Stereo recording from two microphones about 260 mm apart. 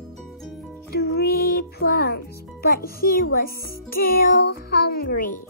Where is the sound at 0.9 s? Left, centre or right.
Left.